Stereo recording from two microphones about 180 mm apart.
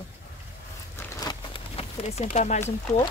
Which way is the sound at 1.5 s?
35° left (ahead or behind).